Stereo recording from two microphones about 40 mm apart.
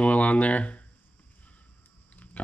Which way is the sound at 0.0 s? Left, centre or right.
Left.